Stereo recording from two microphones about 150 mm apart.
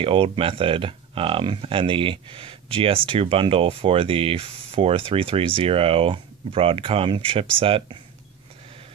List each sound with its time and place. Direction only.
0.0 s speech: 35° right (ahead or behind)